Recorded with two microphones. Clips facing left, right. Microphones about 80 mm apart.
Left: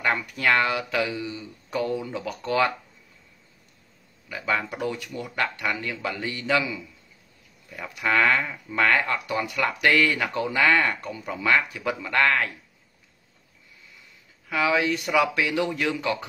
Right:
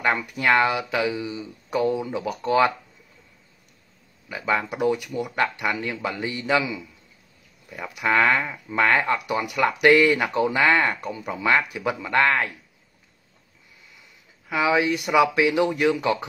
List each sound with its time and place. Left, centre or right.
0.0 s speech: centre
4.3 s speech: centre
14.5 s speech: centre